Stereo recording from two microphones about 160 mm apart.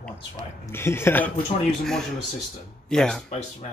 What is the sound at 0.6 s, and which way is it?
Speech, 15° left (ahead or behind).